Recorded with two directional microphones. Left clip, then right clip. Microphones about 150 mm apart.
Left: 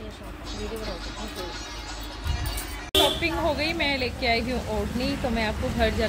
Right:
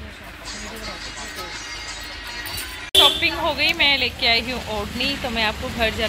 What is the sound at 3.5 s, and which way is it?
Speech, 10° left (ahead or behind).